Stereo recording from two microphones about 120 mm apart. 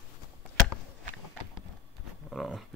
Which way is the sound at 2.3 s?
Centre (ahead or behind).